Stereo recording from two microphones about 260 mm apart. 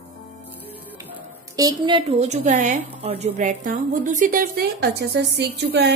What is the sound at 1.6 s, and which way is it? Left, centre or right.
A woman's voice, centre.